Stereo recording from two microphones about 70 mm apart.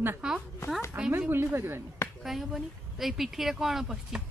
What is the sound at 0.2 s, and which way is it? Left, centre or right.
Speech, centre.